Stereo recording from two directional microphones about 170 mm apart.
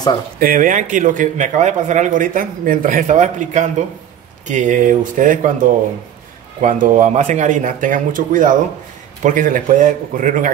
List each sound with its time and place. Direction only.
0.4 s a man's voice: 55° right (ahead or behind)